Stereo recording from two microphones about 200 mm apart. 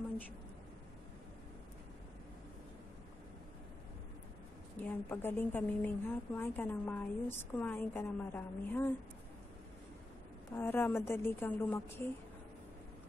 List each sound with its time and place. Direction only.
4.7 s a woman's voice: 10° left (ahead or behind)
10.5 s a woman's voice: 10° left (ahead or behind)